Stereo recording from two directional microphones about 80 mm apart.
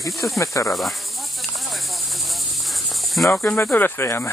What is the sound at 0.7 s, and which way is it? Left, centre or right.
Speech, centre.